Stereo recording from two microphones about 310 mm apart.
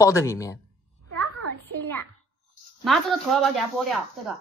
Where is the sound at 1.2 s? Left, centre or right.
Right.